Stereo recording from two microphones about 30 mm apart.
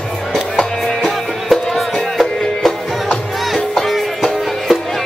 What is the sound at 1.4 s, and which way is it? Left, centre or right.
Music, centre.